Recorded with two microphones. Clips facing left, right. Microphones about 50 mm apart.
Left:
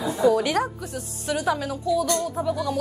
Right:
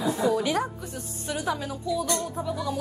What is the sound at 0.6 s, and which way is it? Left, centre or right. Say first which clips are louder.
Speech: left 4 dB; centre.